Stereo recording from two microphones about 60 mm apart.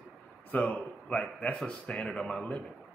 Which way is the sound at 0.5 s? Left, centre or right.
Left.